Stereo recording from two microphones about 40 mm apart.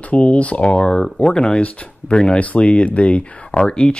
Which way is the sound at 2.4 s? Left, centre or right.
Left.